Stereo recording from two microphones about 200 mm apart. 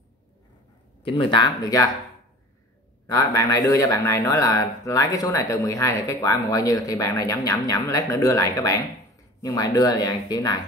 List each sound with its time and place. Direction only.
1.0 s speech: 25° left (ahead or behind)
3.1 s speech: 15° left (ahead or behind)